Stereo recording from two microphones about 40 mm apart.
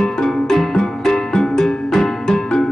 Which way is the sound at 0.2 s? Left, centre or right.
Centre.